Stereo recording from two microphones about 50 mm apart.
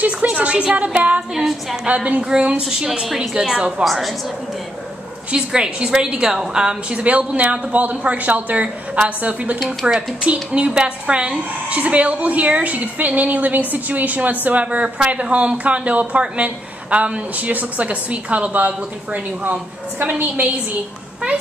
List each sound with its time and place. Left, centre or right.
0.0 s speech: right
1.3 s a woman's voice: centre
2.0 s speech: right
2.6 s a woman's voice: centre
3.8 s a woman's voice: centre
5.3 s speech: centre; by 20.5 s right